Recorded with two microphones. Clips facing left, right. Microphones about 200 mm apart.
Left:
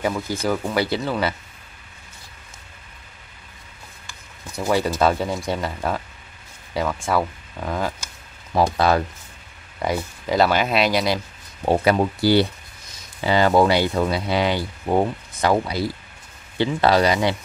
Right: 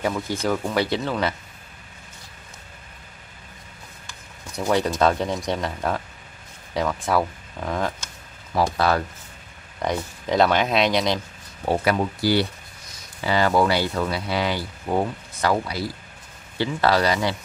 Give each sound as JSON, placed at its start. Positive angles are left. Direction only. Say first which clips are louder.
{"t": 0.0, "sound": "speech", "louder": "left 1 dB", "side_deg": 5}
{"t": 4.1, "sound": "speech", "louder": "left 1 dB", "side_deg": 5}
{"t": 8.5, "sound": "speech", "louder": "left 3 dB", "side_deg": 20}
{"t": 9.8, "sound": "speech", "louder": "left 1 dB", "side_deg": 5}
{"t": 11.6, "sound": "speech", "louder": "left 3 dB", "side_deg": 25}